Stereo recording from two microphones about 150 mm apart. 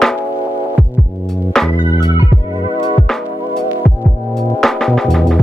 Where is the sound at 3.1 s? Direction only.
5° left (ahead or behind).